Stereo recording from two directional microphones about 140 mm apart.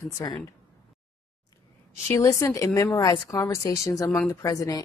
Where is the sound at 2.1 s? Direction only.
25° left (ahead or behind).